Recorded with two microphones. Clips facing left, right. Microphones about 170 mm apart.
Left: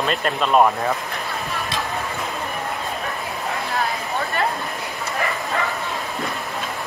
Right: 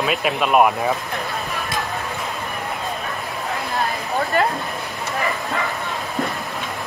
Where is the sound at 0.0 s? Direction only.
5° right (ahead or behind).